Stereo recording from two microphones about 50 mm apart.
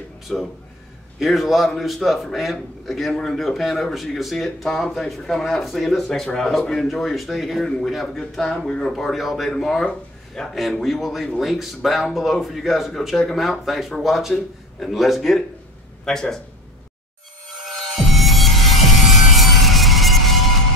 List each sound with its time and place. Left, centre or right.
0.3 s speech: centre
8.6 s speech: centre
8.9 s speech: centre
9.8 s a sound: centre
10.5 s speech: centre
16.1 s speech: centre
17.5 s music: centre